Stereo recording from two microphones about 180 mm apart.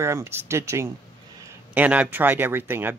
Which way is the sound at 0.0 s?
15° right (ahead or behind).